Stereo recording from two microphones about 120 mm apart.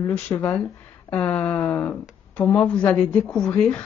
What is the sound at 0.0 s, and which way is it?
A woman's voice, 20° left (ahead or behind).